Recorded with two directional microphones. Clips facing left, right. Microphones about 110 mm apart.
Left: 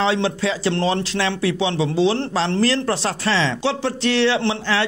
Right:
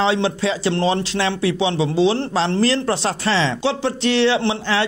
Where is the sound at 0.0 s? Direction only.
20° right (ahead or behind).